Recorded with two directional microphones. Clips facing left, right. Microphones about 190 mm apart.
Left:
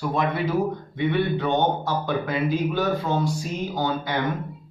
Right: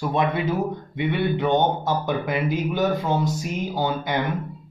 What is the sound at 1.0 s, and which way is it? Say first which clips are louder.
Speech: even; 15° right (ahead or behind).